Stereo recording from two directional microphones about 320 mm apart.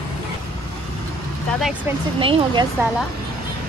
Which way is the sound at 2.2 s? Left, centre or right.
Centre.